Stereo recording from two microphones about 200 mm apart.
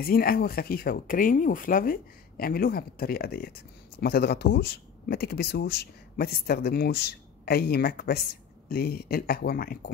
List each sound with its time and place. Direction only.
0.0 s speech: 50° left (ahead or behind)